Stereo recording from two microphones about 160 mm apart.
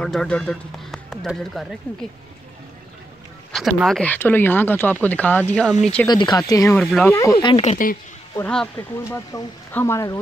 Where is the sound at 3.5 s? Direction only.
Centre (ahead or behind).